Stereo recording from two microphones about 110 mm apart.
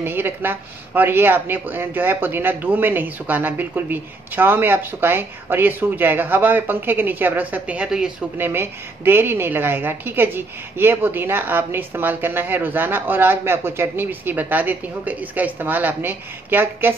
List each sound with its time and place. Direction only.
0.0 s a woman's voice: 20° right (ahead or behind)
8.4 s a woman's voice: 20° right (ahead or behind)